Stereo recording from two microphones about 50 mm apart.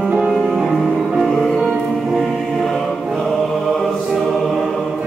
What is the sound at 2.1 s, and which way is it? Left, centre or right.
Choir, centre.